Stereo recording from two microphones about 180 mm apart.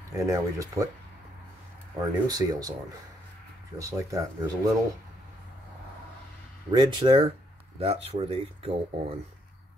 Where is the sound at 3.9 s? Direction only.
15° right (ahead or behind).